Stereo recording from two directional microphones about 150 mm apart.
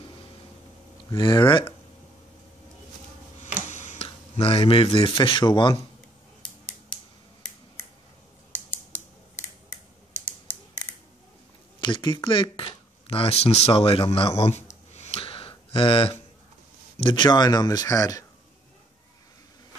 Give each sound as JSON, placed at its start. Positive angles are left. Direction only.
{"t": 1.1, "sound": "speech", "side_deg": 35}
{"t": 3.6, "sound": "a sound", "side_deg": 55}
{"t": 4.4, "sound": "speech", "side_deg": 40}
{"t": 8.5, "sound": "scissors", "side_deg": 15}
{"t": 10.1, "sound": "computer keyboard", "side_deg": 10}
{"t": 11.8, "sound": "speech", "side_deg": 30}
{"t": 14.9, "sound": "a sound", "side_deg": 45}
{"t": 17.0, "sound": "speech", "side_deg": 30}